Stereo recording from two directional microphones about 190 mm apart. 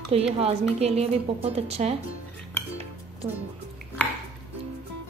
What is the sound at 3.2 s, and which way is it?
Speech, 20° right (ahead or behind).